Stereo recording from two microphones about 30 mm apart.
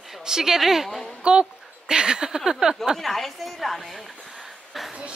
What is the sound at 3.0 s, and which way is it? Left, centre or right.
Speech, centre.